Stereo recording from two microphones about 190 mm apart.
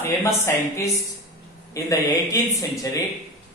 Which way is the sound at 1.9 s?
20° left (ahead or behind).